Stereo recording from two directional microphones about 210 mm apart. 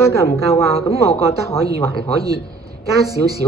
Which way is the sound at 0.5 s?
25° left (ahead or behind).